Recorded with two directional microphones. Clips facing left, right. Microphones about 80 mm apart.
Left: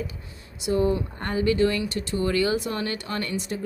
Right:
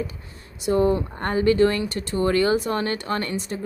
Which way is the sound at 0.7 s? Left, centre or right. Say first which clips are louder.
Right 3 dB; right.